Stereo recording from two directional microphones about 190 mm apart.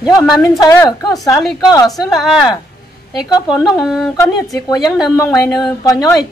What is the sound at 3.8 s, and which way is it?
Speech, centre (ahead or behind).